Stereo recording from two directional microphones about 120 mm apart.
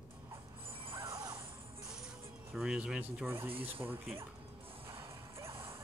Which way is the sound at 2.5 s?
5° right (ahead or behind).